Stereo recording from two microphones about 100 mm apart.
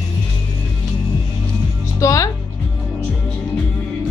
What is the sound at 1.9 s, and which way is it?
Music, 35° left (ahead or behind).